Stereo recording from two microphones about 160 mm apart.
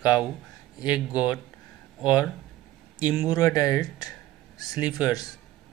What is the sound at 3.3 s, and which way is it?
Speech, 25° left (ahead or behind).